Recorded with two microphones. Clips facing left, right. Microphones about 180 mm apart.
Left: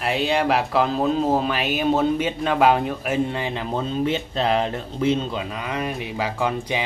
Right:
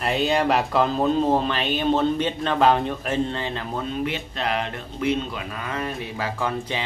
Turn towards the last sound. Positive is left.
turn(degrees=15)  # may be behind; listen again after turning